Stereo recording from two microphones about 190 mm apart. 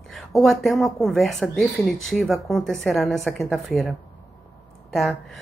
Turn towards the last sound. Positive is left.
turn(degrees=0)  # may be behind; listen again after turning